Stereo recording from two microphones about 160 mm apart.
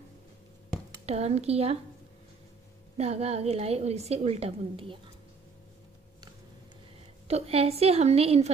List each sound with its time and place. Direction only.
1.0 s a woman's voice: 40° right (ahead or behind)
3.0 s a woman's voice: 40° right (ahead or behind)
7.2 s a woman's voice: 40° right (ahead or behind)